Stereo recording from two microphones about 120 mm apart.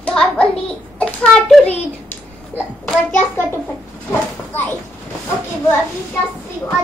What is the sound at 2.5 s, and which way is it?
Speech, 15° right (ahead or behind).